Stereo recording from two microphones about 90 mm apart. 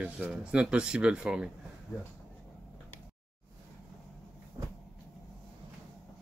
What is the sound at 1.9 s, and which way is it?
Speech, 30° left (ahead or behind).